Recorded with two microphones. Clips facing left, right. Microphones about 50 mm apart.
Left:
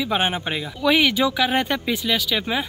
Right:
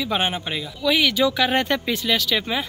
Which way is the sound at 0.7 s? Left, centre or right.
Left.